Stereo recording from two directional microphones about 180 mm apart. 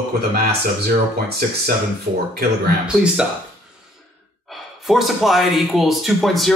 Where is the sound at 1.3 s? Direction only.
55° right (ahead or behind).